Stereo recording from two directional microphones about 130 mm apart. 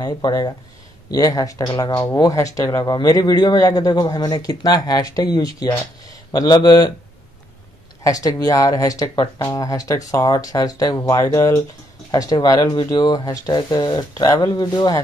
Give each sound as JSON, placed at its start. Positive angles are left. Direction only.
{"t": 0.0, "sound": "speech", "side_deg": 30}
{"t": 8.0, "sound": "speech", "side_deg": 30}